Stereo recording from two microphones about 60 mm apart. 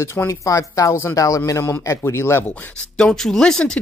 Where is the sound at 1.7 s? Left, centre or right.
Left.